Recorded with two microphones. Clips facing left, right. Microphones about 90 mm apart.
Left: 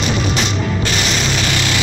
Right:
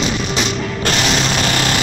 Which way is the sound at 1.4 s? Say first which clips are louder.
Right 2 dB; 45° right (ahead or behind).